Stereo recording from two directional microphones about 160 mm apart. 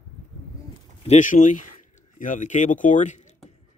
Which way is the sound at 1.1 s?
50° left (ahead or behind).